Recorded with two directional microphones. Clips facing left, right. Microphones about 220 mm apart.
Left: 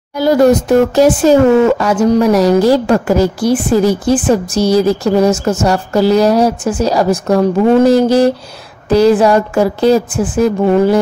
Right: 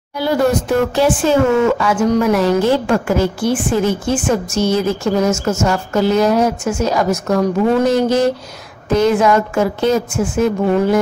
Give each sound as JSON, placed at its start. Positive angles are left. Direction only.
{"t": 0.2, "sound": "speech", "side_deg": 40}